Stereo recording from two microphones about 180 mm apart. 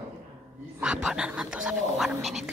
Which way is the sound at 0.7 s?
5° right (ahead or behind).